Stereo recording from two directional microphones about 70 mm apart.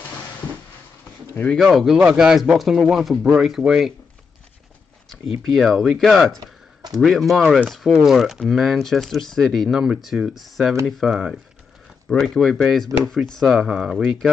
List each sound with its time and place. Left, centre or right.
1.3 s speech: left
1.6 s speech: centre
2.0 s speech: centre
5.5 s speech: centre
7.9 s speech: centre
9.8 s speech: centre
10.3 s speech: centre
12.1 s speech: centre